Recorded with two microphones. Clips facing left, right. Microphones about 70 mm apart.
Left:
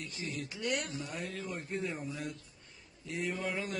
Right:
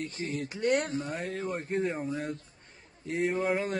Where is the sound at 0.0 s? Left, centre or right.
Right.